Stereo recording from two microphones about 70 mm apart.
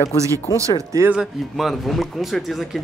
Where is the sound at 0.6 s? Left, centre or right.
Right.